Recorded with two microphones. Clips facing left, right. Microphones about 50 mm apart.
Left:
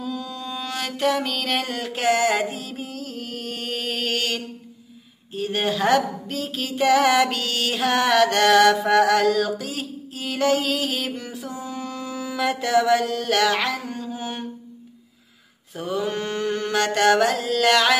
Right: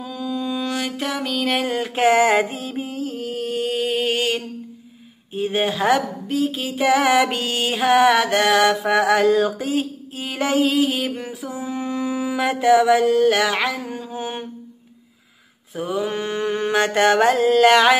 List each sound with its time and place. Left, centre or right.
0.0 s music: centre
1.8 s music: right; by 4.1 s centre
4.1 s a sound: centre
15.7 s mantra: centre; by 17.9 s right